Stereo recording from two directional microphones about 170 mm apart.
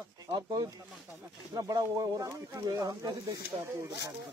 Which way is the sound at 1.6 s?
20° right (ahead or behind).